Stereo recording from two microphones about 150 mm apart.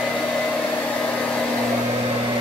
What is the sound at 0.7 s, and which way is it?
Vehicle, 5° left (ahead or behind).